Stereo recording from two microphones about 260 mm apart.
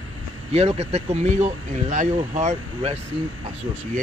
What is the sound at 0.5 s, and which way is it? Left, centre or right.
Speech, right.